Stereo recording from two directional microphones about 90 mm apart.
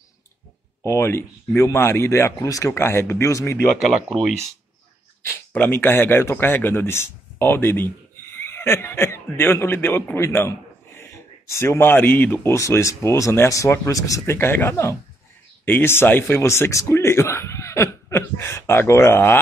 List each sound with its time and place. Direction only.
0.8 s speech: 30° left (ahead or behind)
5.5 s speech: 20° left (ahead or behind)